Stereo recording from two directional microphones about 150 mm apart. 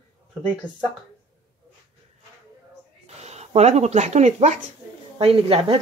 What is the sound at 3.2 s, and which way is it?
Speech, 45° right (ahead or behind).